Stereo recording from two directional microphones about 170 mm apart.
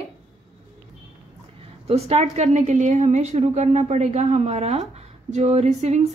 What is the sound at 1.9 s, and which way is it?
A woman's voice, 35° right (ahead or behind).